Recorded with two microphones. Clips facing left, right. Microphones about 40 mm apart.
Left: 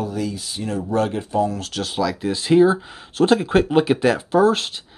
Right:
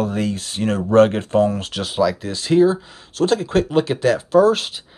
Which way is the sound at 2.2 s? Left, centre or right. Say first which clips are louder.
Left 4 dB; centre.